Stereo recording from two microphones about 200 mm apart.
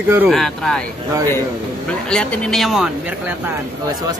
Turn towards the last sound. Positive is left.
turn(degrees=0)  # may be behind; listen again after turning